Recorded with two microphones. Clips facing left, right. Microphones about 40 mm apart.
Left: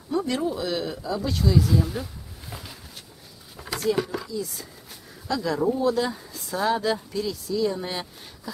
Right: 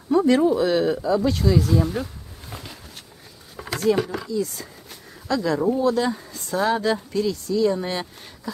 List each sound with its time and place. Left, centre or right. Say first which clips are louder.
0.1 s speech: right 8 dB; right
2.5 s a sound: right 2 dB; centre
3.7 s speech: right 4 dB; centre